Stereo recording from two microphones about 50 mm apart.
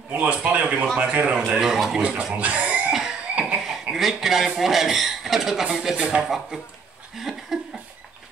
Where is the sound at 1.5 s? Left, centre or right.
Centre.